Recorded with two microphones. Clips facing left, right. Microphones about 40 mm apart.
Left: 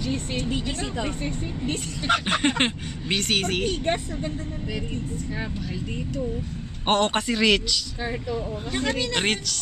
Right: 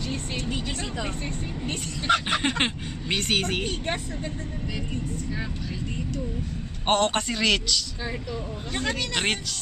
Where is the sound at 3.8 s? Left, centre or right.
Centre.